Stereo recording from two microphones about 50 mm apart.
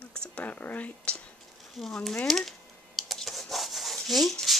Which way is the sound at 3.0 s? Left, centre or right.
Centre.